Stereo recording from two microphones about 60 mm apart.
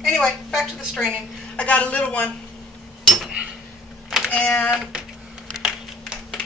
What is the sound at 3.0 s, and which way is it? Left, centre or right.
Cutlery, centre.